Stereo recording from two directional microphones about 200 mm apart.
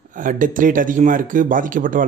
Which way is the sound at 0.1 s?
40° right (ahead or behind).